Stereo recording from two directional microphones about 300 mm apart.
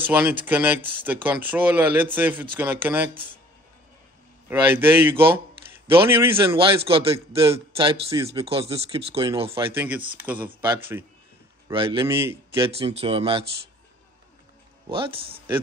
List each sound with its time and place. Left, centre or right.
0.1 s a man's voice: centre
4.5 s a man's voice: centre
9.7 s a man's voice: centre
12.7 s speech: centre
14.9 s a man's voice: centre